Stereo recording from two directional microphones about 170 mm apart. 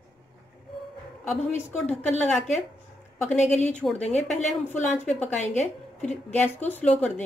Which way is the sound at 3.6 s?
10° left (ahead or behind).